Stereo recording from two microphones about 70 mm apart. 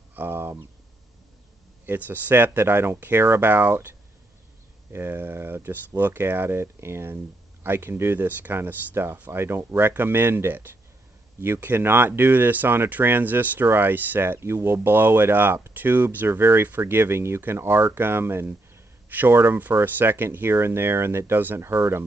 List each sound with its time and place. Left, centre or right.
0.1 s speech: right
1.9 s speech: right
4.9 s speech: right